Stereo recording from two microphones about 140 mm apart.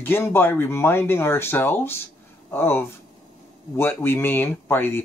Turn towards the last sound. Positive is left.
turn(degrees=15)  # may be behind; listen again after turning